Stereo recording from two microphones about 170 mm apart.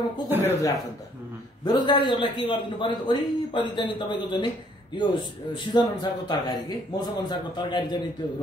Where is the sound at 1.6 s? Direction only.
25° left (ahead or behind).